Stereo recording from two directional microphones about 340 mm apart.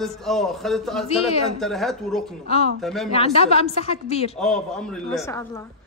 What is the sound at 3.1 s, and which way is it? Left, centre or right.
A woman's voice, centre.